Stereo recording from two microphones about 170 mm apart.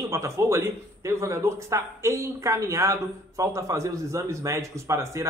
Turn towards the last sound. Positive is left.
turn(degrees=-15)  # may be behind; listen again after turning